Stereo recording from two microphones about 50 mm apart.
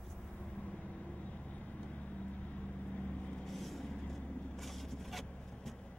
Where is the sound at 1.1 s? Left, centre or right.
Left.